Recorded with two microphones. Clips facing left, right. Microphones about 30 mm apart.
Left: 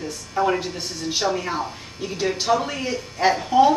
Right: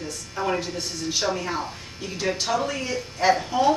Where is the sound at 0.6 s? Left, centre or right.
Centre.